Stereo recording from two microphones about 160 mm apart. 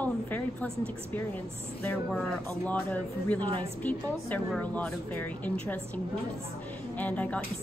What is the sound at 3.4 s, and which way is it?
Speech, 30° right (ahead or behind).